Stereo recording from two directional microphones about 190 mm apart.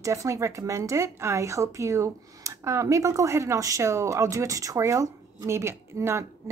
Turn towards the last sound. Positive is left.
turn(degrees=-15)  # may be behind; listen again after turning